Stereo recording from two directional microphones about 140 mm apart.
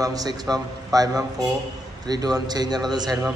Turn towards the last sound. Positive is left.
turn(degrees=-30)  # may be behind; listen again after turning